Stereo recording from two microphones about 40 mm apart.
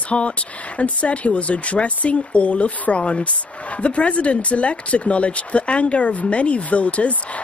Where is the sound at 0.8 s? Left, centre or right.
Left.